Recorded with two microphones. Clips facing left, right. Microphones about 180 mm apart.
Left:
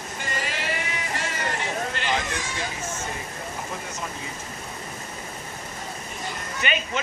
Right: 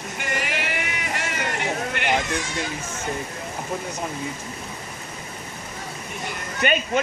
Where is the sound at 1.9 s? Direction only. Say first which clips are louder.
Right 5 dB; 60° right (ahead or behind).